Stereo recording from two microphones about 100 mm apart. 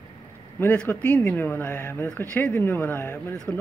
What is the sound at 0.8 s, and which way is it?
Speech, 15° left (ahead or behind).